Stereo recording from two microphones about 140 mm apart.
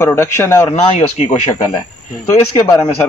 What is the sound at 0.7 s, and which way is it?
Speech, 55° left (ahead or behind).